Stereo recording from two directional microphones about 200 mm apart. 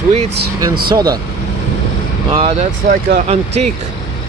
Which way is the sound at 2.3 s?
30° right (ahead or behind).